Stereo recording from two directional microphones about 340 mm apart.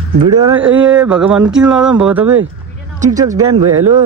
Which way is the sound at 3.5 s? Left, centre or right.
Right.